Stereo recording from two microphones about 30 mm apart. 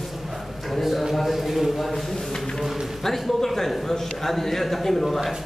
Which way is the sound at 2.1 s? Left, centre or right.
Centre.